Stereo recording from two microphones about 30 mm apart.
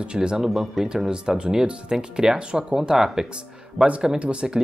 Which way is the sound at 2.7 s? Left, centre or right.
Centre.